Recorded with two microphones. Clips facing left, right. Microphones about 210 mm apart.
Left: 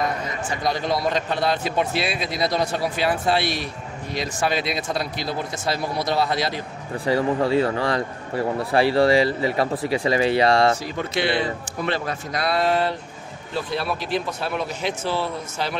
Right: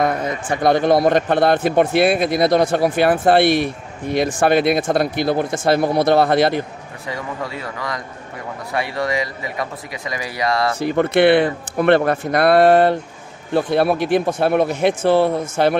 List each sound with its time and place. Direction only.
0.0 s a man's voice: 55° right (ahead or behind)
7.1 s speech: 30° left (ahead or behind)
10.8 s a man's voice: 60° right (ahead or behind)